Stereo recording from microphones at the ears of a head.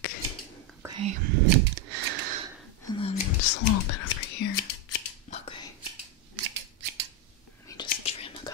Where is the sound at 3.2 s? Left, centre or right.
Left.